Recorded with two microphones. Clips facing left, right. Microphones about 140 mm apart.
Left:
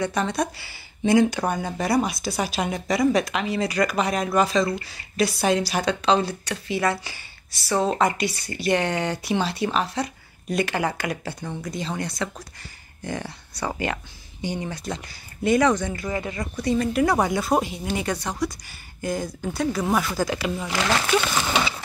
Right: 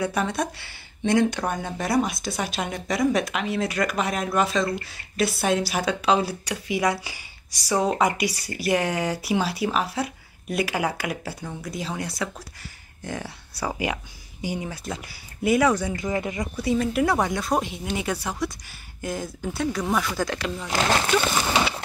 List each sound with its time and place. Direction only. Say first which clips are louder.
0.0 s speech: left 1 dB; 5° right (ahead or behind)
16.2 s speech: right 1 dB; 20° right (ahead or behind)
16.5 s speech: left 1 dB; 5° right (ahead or behind)
20.7 s speech: right 1 dB; 30° right (ahead or behind)